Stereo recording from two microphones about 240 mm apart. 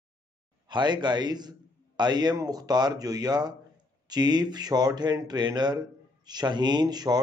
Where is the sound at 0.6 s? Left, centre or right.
Centre.